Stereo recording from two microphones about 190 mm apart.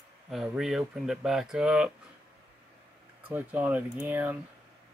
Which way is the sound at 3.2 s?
10° right (ahead or behind).